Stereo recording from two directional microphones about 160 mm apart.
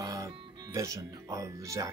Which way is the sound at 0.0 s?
20° right (ahead or behind).